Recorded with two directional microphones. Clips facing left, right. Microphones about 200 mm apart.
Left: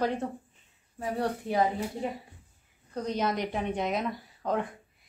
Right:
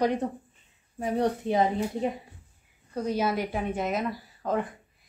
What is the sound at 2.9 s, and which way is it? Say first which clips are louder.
Speech: right 3 dB; 10° right (ahead or behind).